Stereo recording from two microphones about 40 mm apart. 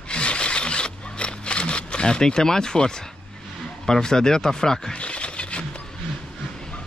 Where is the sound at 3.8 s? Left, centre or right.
Centre.